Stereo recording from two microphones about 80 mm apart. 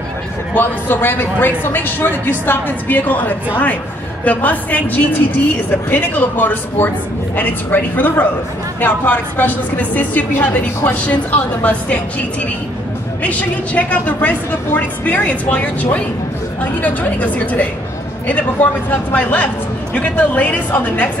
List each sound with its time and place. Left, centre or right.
0.6 s a woman's voice: left
13.2 s a woman's voice: centre